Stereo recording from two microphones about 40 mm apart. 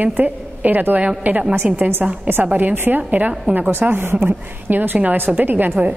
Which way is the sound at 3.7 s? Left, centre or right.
Right.